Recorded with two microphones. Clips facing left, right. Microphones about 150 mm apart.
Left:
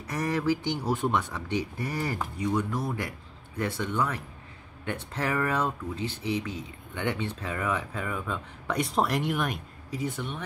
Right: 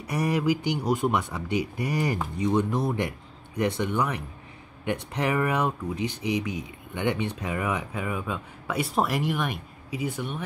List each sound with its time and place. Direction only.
0.0 s speech: 10° right (ahead or behind)